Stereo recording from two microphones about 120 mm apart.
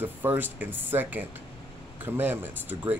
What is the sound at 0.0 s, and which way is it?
Speech, 15° right (ahead or behind).